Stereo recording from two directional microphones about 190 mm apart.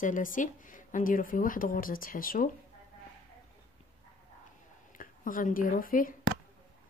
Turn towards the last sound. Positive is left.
turn(degrees=45)  # may be behind; listen again after turning